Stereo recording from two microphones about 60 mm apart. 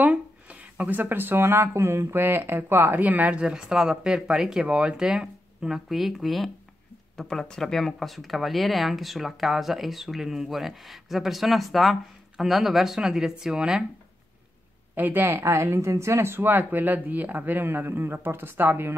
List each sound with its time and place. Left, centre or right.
0.0 s speech: right
3.0 s speech: right
15.0 s speech: right
15.3 s speech: right